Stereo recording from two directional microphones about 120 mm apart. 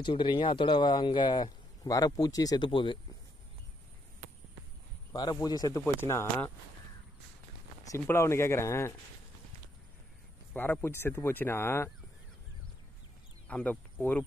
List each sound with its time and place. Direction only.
0.0 s speech: 40° left (ahead or behind)
2.7 s speech: 45° left (ahead or behind)
5.1 s speech: 30° left (ahead or behind)
5.9 s speech: 20° left (ahead or behind)
7.8 s speech: 25° left (ahead or behind)
10.5 s speech: 15° left (ahead or behind)
13.5 s speech: 10° left (ahead or behind)